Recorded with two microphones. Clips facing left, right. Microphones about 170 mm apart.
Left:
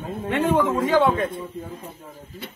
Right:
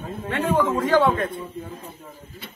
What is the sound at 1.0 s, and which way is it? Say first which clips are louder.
Speech: left 1 dB; centre (ahead or behind).